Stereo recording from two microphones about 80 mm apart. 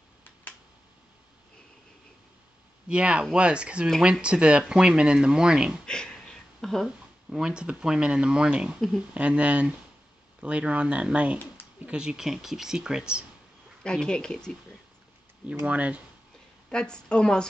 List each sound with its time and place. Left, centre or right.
2.9 s speech: centre
5.9 s a sound: centre
7.2 s speech: centre
13.8 s a woman's voice: centre
15.6 s speech: centre
16.6 s a woman's voice: centre